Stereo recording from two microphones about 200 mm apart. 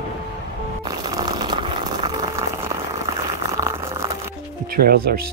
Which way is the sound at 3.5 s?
15° right (ahead or behind).